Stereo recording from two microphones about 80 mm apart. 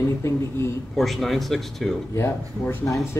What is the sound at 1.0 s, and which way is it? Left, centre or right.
Speech, centre.